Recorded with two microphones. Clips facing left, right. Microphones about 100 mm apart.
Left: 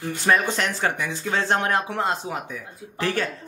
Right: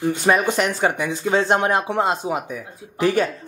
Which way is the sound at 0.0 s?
20° right (ahead or behind).